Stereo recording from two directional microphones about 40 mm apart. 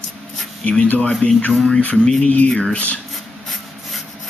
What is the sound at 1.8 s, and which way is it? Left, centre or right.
Speech, left.